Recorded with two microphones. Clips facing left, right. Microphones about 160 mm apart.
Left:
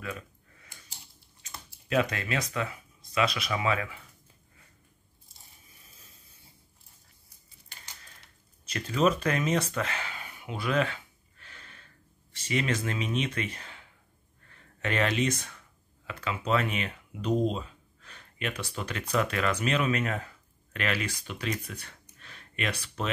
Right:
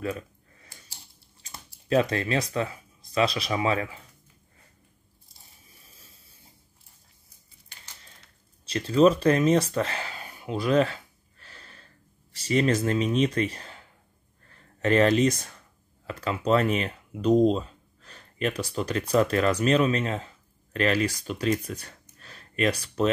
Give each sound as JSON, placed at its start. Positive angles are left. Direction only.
{"t": 0.0, "sound": "computer keyboard", "side_deg": -35}
{"t": 1.4, "sound": "speech", "side_deg": -35}
{"t": 8.6, "sound": "a sound", "side_deg": -30}
{"t": 16.1, "sound": "speech", "side_deg": -40}